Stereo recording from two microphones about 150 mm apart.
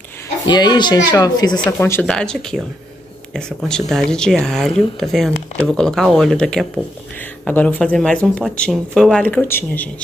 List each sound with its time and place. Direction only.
0.5 s speech: 30° left (ahead or behind)
1.6 s speech: 15° left (ahead or behind)